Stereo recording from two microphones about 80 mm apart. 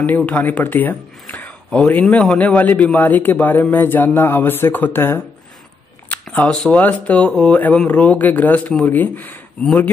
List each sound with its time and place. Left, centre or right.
0.0 s a man's voice: centre
1.3 s a sound: centre
2.0 s a man's voice: centre; by 5.2 s left
6.0 s shuffling cards: centre
6.7 s a man's voice: centre
9.6 s speech: centre